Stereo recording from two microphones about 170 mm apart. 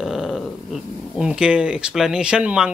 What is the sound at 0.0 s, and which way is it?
Dog, centre (ahead or behind).